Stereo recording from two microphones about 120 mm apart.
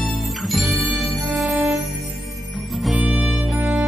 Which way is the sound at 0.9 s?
15° right (ahead or behind).